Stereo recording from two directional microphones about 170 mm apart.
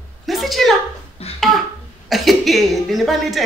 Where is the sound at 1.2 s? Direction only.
35° left (ahead or behind).